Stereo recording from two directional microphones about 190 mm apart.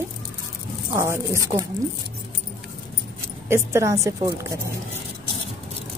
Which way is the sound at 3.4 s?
15° right (ahead or behind).